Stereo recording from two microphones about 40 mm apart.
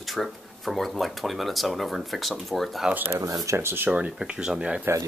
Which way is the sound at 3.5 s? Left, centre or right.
Right.